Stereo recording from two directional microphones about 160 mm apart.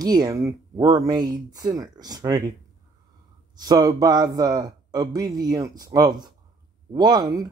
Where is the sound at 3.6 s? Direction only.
25° right (ahead or behind).